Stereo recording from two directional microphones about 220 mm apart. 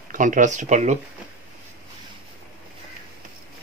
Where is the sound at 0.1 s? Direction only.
35° right (ahead or behind).